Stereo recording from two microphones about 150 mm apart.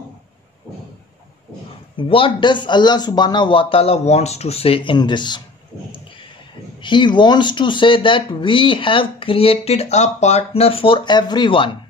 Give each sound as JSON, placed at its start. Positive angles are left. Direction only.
{"t": 2.0, "sound": "speech", "side_deg": 35}
{"t": 6.8, "sound": "speech", "side_deg": 30}